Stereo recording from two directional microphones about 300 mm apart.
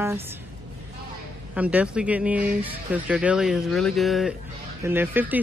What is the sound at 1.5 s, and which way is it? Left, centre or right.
Speech, centre.